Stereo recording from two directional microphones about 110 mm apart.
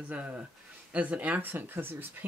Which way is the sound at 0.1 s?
10° right (ahead or behind).